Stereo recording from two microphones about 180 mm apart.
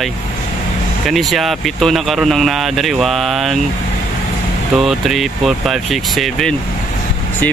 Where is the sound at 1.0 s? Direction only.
Centre (ahead or behind).